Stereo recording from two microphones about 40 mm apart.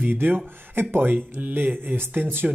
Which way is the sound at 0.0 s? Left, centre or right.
Right.